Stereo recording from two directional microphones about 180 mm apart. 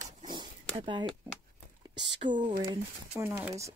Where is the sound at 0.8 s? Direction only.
25° right (ahead or behind).